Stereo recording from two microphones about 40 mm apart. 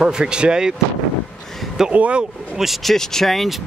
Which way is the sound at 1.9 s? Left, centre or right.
Right.